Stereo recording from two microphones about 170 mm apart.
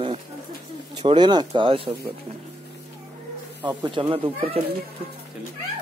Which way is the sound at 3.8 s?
30° right (ahead or behind).